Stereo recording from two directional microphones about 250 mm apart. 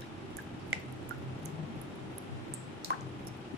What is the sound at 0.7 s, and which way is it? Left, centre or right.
Finger snapping, right.